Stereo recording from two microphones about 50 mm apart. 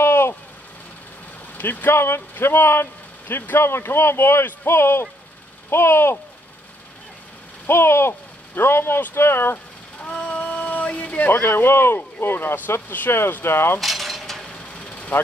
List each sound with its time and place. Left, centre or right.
0.0 s vehicle: left
1.6 s speech: left
7.6 s speech: left
10.0 s a sound: left
11.2 s speech: left
13.7 s mechanisms: centre
14.7 s vehicle: left